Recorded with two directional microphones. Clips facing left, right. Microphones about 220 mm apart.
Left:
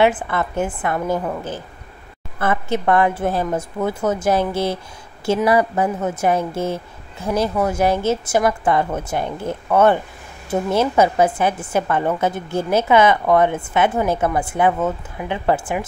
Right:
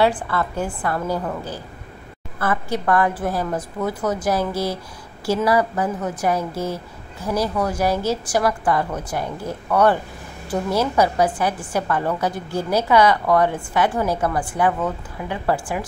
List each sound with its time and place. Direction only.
0.0 s a woman's voice: 20° left (ahead or behind)